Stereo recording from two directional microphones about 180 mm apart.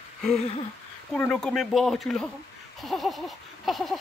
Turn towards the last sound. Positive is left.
turn(degrees=0)  # may be behind; listen again after turning